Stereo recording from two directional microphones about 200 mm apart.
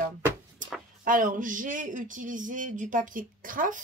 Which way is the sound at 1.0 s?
40° right (ahead or behind).